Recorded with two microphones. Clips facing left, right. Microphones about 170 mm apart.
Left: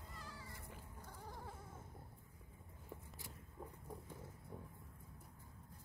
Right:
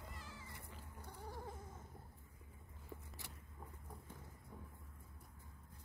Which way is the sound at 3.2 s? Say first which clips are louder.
Left 2 dB; 75° right (ahead or behind).